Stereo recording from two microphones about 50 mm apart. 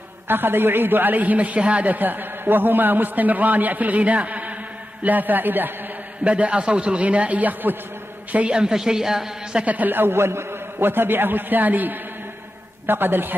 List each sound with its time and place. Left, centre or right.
0.3 s a man's voice: right
6.2 s a man's voice: right
8.5 s a woman's voice: centre
9.7 s a man's voice: right